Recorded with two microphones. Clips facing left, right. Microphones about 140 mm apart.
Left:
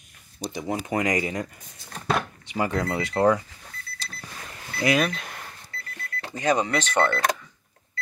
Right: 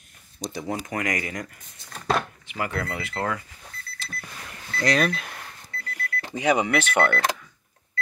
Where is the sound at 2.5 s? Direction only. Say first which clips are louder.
Left 4 dB; 25° left (ahead or behind).